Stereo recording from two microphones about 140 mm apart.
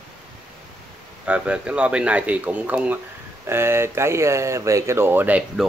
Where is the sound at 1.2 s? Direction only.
10° right (ahead or behind).